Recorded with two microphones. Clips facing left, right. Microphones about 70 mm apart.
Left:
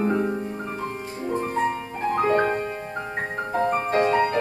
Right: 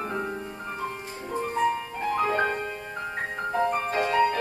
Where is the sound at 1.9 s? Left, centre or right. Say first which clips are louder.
Left 4 dB; left.